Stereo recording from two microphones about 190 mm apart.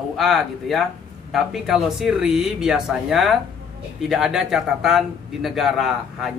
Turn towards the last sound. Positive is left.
turn(degrees=0)  # may be behind; listen again after turning